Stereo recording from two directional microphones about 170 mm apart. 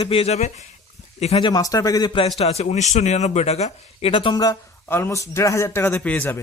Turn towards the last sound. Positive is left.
turn(degrees=10)  # may be behind; listen again after turning